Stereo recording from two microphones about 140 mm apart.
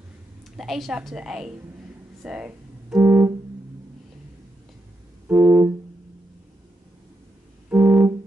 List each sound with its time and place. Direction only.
0.6 s a woman's voice: centre (ahead or behind)
2.2 s keyboard: 5° right (ahead or behind)
5.3 s music: 10° right (ahead or behind)
7.7 s music: 10° right (ahead or behind)